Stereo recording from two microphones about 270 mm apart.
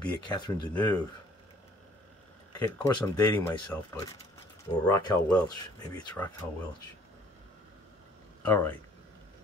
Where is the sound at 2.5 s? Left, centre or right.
Centre.